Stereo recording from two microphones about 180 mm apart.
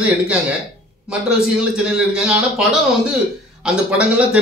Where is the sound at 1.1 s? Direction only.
5° right (ahead or behind).